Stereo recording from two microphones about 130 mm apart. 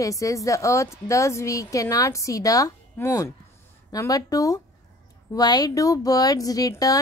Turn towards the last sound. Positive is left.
turn(degrees=25)  # may be behind; listen again after turning